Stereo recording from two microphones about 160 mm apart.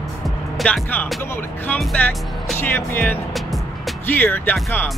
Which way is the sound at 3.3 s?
Centre (ahead or behind).